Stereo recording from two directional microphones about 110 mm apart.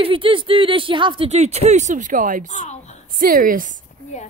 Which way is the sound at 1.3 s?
85° right.